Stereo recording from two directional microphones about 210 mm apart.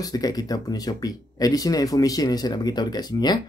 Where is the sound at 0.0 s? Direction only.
20° left (ahead or behind).